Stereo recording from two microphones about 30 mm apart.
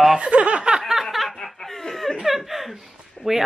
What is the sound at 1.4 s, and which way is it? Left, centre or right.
Laughter, centre.